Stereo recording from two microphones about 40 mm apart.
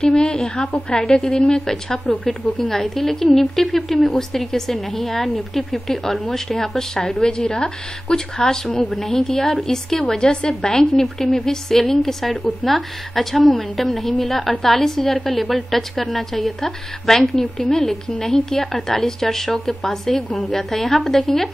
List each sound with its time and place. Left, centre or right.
0.0 s a woman's voice: left
8.8 s a woman's voice: centre